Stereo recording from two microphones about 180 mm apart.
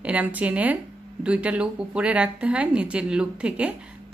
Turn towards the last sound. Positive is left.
turn(degrees=-5)  # may be behind; listen again after turning